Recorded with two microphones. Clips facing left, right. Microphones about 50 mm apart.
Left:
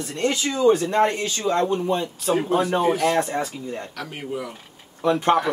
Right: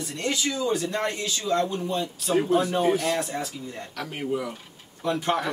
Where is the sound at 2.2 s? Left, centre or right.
Centre.